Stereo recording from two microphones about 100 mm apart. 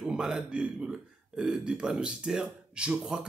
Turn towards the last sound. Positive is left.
turn(degrees=-5)  # may be behind; listen again after turning